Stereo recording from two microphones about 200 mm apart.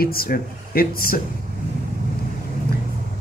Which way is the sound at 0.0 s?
50° left (ahead or behind).